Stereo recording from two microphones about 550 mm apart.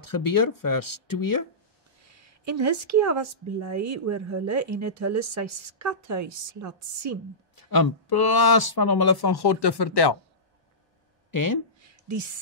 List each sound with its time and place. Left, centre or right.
0.0 s speech: left
2.0 s speech: right
7.5 s speech: left
11.3 s speech: left
11.8 s a sound: right